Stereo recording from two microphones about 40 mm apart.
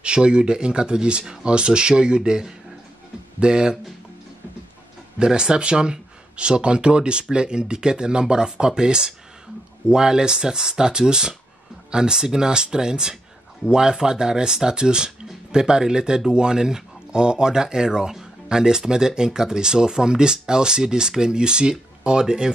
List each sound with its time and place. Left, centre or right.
0.0 s speech: right
5.2 s speech: centre